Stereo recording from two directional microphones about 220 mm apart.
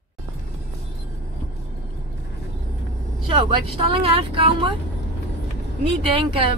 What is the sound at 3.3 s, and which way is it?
Speech, 25° right (ahead or behind).